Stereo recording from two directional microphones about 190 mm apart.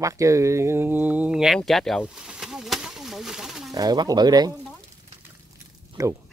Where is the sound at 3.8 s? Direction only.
20° right (ahead or behind).